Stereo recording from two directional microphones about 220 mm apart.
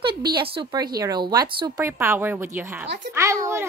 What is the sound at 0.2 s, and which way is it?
Speech, 45° right (ahead or behind).